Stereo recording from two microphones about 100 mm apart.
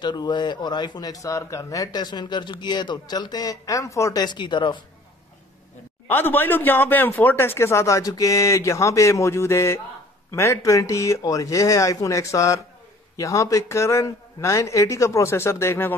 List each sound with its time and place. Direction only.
0.0 s speech: 50° left (ahead or behind); by 4.2 s 30° left (ahead or behind)
4.2 s speech: 50° left (ahead or behind)
6.0 s speech: 20° left (ahead or behind)